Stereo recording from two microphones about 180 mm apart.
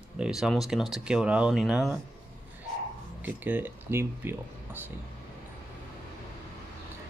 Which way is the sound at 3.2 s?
10° right (ahead or behind).